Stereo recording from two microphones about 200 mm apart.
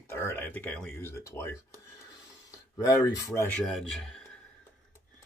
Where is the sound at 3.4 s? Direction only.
5° left (ahead or behind).